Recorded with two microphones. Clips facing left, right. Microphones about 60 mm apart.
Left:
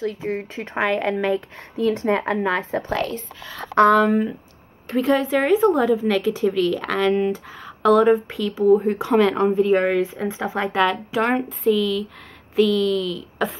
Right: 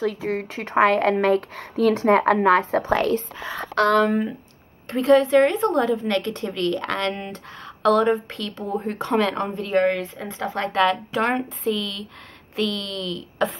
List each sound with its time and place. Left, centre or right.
0.1 s speech: right
0.4 s a woman's voice: right
1.2 s speech: right
2.0 s a woman's voice: right
3.3 s speech: right
3.9 s a woman's voice: centre